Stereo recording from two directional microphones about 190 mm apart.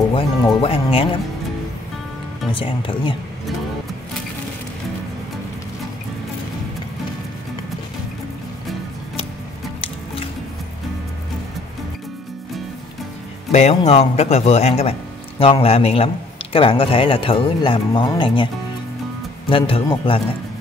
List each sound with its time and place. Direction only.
0.1 s speech: 30° left (ahead or behind)
2.5 s speech: 25° left (ahead or behind)
13.5 s a man's voice: 35° left (ahead or behind)
19.5 s speech: 25° left (ahead or behind)